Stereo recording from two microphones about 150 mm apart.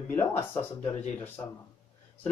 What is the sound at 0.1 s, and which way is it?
Speech, 15° left (ahead or behind).